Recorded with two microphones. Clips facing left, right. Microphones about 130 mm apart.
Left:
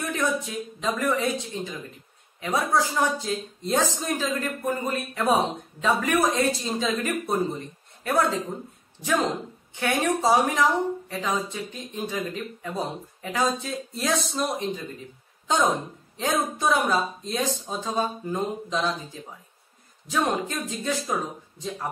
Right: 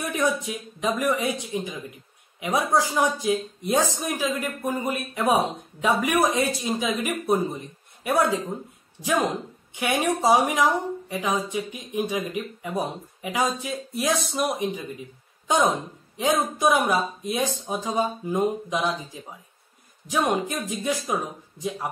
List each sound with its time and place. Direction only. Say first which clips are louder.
0.1 s speech: right 2 dB; 15° right (ahead or behind)